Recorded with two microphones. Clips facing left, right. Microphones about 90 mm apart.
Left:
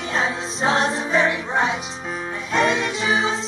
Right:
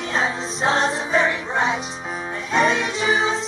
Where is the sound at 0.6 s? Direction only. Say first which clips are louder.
Even; centre (ahead or behind).